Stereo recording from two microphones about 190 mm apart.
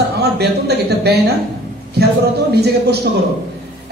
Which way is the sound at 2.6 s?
60° right (ahead or behind).